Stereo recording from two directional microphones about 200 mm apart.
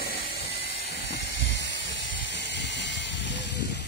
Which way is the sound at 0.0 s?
50° left (ahead or behind).